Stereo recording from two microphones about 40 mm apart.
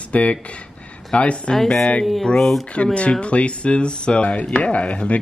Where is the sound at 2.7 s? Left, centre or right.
Left.